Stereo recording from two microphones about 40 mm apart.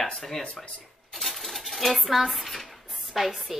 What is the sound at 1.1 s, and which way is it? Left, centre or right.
Dishes, centre.